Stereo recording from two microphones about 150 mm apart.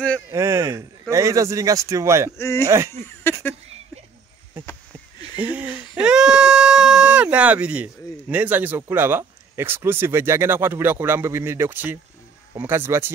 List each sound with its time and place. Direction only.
0.3 s speech: 20° right (ahead or behind)
2.3 s speech: 20° left (ahead or behind)
2.6 s speech: 20° right (ahead or behind)
4.6 s a sound: 10° right (ahead or behind)
5.4 s speech: 10° right (ahead or behind)